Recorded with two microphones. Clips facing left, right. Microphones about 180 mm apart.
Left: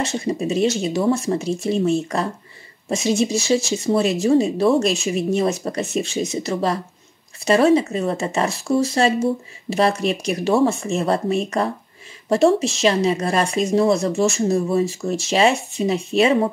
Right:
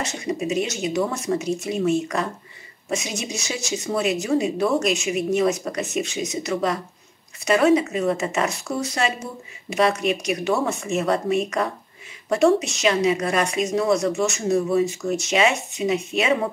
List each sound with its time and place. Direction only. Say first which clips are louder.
0.0 s speech: left 4 dB; 30° left (ahead or behind)